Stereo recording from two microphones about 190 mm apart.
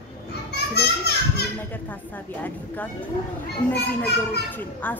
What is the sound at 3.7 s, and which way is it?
Speech, 60° left (ahead or behind).